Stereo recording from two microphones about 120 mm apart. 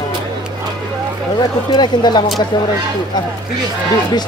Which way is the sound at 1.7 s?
35° left (ahead or behind).